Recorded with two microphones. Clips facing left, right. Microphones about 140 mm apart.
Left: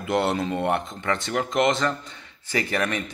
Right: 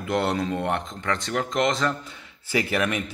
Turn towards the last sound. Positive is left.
turn(degrees=-10)  # may be behind; listen again after turning